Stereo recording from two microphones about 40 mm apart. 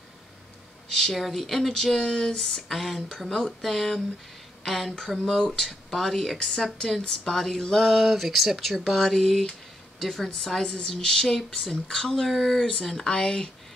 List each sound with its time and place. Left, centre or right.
0.8 s speech: centre
2.0 s a woman's voice: centre
2.7 s a woman's voice: centre
7.9 s a woman's voice: centre
12.3 s a woman's voice: centre